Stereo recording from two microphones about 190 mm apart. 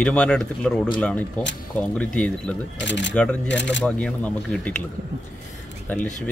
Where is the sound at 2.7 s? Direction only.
70° left (ahead or behind).